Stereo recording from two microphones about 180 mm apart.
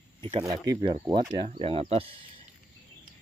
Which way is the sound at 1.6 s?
30° right (ahead or behind).